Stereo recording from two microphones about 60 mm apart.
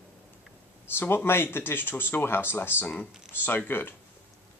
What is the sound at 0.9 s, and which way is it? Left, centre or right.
Speech, left.